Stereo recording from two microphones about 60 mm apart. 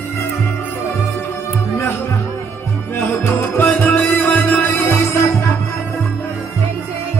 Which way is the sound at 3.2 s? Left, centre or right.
Left.